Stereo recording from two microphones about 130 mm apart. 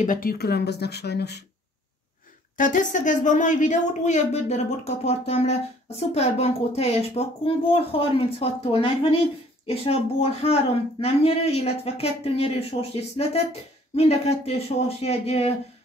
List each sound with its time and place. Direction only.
0.0 s speech: 90° left
2.5 s speech: 85° left; by 15.5 s 50° left (ahead or behind)